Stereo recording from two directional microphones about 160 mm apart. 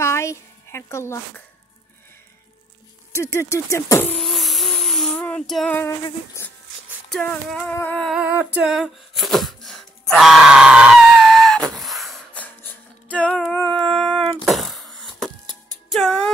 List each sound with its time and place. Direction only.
0.0 s speech: 15° left (ahead or behind)
3.1 s a sound: 15° left (ahead or behind)
6.4 s speech: 15° left (ahead or behind)
7.1 s speech: 5° left (ahead or behind)
7.7 s humming: 10° left (ahead or behind)
13.1 s music: 5° left (ahead or behind)
14.0 s a sound: 5° left (ahead or behind)
15.9 s music: 5° left (ahead or behind)